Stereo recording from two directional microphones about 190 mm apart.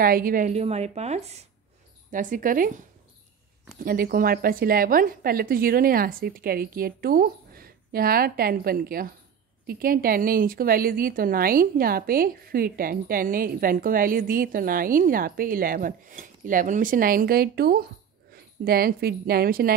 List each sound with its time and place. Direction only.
0.0 s a woman's voice: 50° right (ahead or behind)
3.8 s a woman's voice: 50° right (ahead or behind)